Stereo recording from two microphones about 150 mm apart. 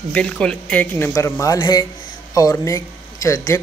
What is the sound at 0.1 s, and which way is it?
Speech, 5° left (ahead or behind).